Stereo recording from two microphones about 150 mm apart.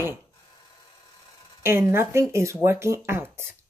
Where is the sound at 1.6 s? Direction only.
15° right (ahead or behind).